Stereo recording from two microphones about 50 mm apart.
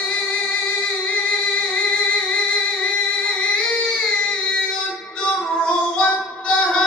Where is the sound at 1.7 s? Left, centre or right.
Left.